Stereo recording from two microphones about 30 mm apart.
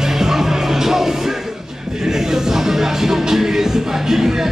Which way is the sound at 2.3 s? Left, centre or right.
Centre.